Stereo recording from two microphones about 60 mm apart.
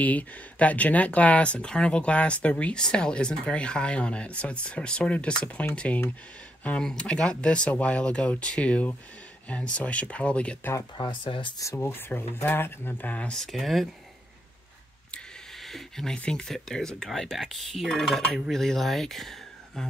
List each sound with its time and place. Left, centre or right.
0.0 s speech: left
6.8 s speech: centre
11.7 s speech: left
13.3 s speech: centre
15.6 s a sound: centre
16.2 s speech: centre